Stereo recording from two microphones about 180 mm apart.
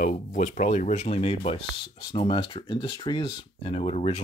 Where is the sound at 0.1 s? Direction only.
45° left (ahead or behind).